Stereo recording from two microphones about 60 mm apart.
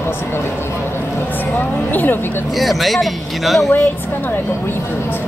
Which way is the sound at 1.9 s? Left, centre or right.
Left.